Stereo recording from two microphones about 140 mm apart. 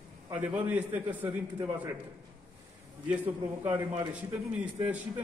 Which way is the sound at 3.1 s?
10° right (ahead or behind).